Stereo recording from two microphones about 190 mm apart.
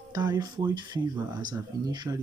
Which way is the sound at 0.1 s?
20° right (ahead or behind).